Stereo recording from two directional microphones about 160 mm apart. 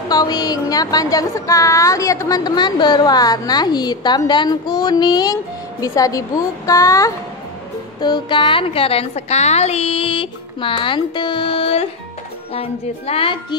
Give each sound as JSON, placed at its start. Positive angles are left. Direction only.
{"t": 0.1, "sound": "a woman's voice", "side_deg": 25}